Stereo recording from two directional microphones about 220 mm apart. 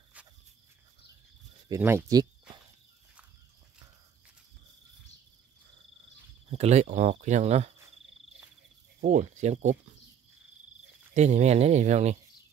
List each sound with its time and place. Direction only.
1.7 s speech: 10° right (ahead or behind)
6.5 s speech: 30° right (ahead or behind)
9.0 s speech: 35° right (ahead or behind)
11.1 s speech: 30° right (ahead or behind)